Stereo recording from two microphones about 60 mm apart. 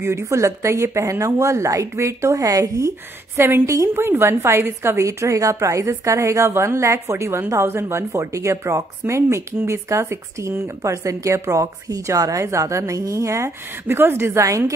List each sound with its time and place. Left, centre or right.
0.0 s a woman's voice: right
3.3 s a woman's voice: right
3.6 s a woman's voice: right
3.9 s a woman's voice: right
13.8 s a woman's voice: right